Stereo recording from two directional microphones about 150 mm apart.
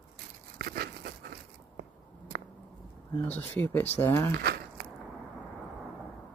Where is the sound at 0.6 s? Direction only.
90° right.